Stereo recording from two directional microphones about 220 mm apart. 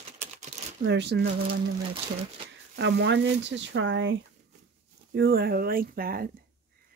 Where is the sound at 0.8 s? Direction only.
50° right (ahead or behind).